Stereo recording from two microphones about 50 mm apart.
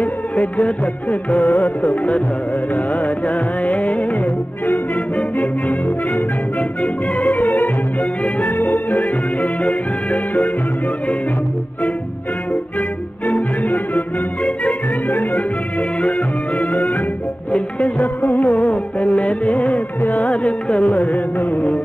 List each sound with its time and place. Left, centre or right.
0.0 s music: left
6.8 s music: left
13.3 s music: left
15.0 s music: left
17.9 s music: left